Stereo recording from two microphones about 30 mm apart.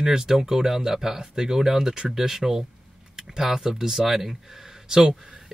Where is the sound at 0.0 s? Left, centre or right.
Right.